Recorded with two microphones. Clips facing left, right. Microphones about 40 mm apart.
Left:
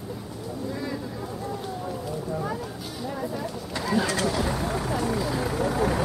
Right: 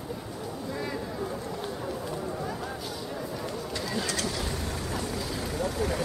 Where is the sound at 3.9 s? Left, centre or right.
Centre.